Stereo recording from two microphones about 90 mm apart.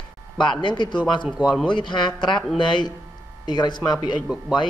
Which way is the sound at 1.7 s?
55° left (ahead or behind).